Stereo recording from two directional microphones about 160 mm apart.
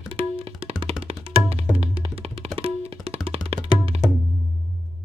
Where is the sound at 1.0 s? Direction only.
40° right (ahead or behind).